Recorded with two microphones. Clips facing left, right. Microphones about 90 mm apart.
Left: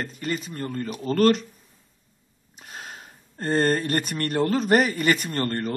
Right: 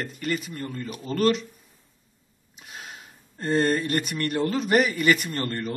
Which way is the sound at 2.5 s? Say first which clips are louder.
Left 2 dB; 40° left (ahead or behind).